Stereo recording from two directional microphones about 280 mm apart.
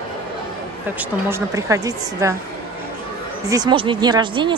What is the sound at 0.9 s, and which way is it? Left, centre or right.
Speech, centre.